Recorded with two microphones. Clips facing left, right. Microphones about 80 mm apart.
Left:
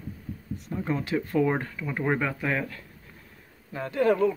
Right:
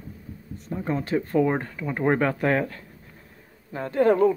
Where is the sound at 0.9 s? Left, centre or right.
Right.